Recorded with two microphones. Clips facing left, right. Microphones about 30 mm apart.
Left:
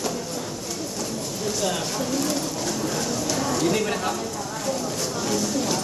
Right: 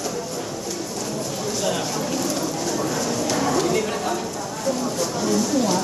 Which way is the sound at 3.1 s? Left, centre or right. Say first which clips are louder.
Right 3 dB; centre.